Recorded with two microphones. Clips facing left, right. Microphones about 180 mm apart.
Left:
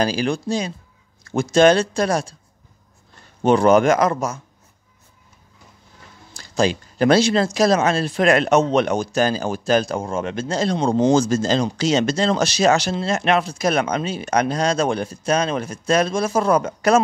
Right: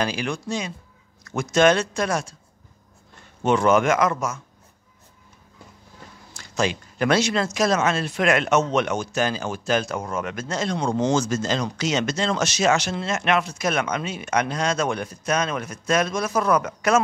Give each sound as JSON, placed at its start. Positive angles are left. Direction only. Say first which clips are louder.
{"t": 0.0, "sound": "speech", "louder": "left 5 dB", "side_deg": 35}
{"t": 3.4, "sound": "speech", "louder": "left 4 dB", "side_deg": 35}
{"t": 6.3, "sound": "speech", "louder": "left 5 dB", "side_deg": 35}